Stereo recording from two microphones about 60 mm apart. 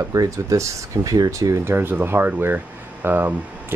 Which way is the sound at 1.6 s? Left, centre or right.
Right.